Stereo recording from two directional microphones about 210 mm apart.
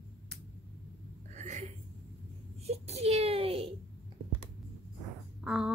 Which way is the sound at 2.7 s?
30° right (ahead or behind).